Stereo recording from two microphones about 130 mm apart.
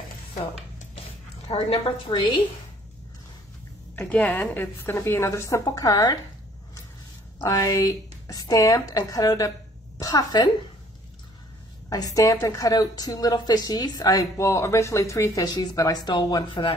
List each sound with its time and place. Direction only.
1.5 s a woman's voice: 50° left (ahead or behind)
3.9 s a woman's voice: 15° left (ahead or behind); by 6.1 s 30° left (ahead or behind)
7.3 s speech: 25° left (ahead or behind)
11.9 s speech: 25° left (ahead or behind)